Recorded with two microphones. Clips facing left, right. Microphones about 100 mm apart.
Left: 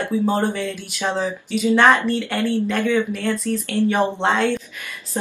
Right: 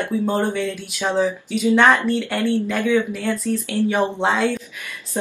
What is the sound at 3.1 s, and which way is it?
Speech, 15° right (ahead or behind).